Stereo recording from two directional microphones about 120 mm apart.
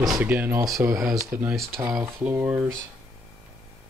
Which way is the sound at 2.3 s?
15° right (ahead or behind).